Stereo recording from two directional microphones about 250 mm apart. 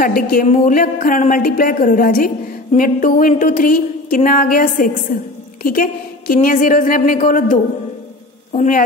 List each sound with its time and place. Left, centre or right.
0.0 s speech: left
8.5 s speech: left